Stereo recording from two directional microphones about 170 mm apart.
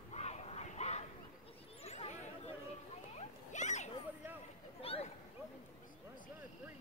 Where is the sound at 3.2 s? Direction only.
45° left (ahead or behind).